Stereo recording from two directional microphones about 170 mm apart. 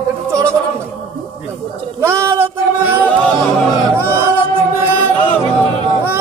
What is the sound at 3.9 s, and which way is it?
Speech, 15° right (ahead or behind).